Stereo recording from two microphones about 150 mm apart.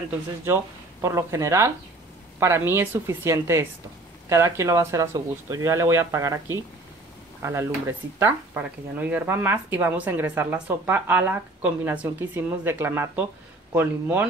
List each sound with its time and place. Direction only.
1.0 s speech: 20° right (ahead or behind)